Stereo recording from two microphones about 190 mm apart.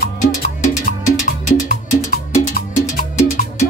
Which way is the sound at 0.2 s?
45° left (ahead or behind).